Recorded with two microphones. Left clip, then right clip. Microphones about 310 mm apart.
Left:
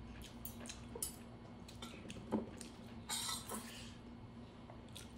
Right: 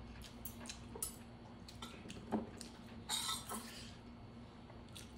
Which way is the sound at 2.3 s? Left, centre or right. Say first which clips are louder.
Even; centre.